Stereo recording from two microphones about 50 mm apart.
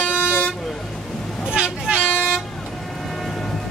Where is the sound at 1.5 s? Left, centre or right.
Centre.